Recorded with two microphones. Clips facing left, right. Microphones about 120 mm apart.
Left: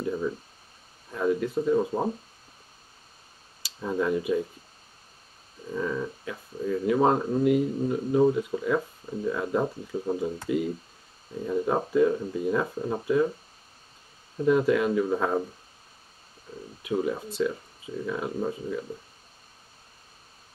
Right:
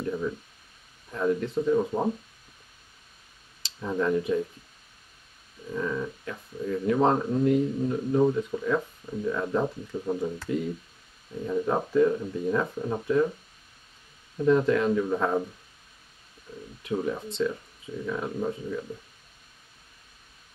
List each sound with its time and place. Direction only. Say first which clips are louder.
0.0 s speech: left 1 dB; 15° left (ahead or behind)
3.6 s speech: even; 10° left (ahead or behind)
5.7 s speech: even; 15° left (ahead or behind)
14.4 s speech: even; 10° left (ahead or behind)
16.5 s speech: left 1 dB; 35° left (ahead or behind)
16.8 s speech: left 1 dB; 5° left (ahead or behind)